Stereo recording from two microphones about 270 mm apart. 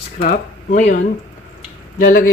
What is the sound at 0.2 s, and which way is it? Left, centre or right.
Speech, left.